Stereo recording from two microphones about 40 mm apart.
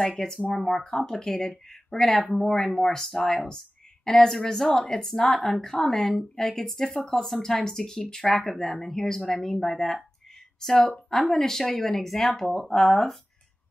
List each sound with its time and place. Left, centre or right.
0.5 s speech: centre
1.0 s speech: centre